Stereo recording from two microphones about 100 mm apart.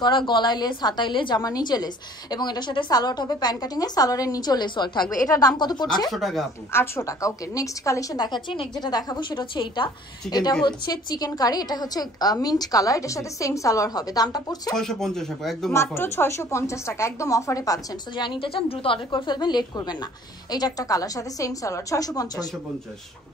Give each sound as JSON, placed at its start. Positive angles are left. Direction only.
{"t": 0.0, "sound": "a woman's voice", "side_deg": 50}
{"t": 1.4, "sound": "a woman's voice", "side_deg": 40}
{"t": 5.2, "sound": "a woman's voice", "side_deg": 35}
{"t": 6.1, "sound": "speech", "side_deg": 0}
{"t": 6.7, "sound": "a woman's voice", "side_deg": 25}
{"t": 14.8, "sound": "speech", "side_deg": 5}
{"t": 15.7, "sound": "a woman's voice", "side_deg": 25}
{"t": 18.1, "sound": "a woman's voice", "side_deg": 50}
{"t": 19.3, "sound": "a woman's voice", "side_deg": 45}